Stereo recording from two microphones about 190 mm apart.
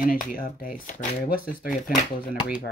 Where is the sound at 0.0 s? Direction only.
45° left (ahead or behind).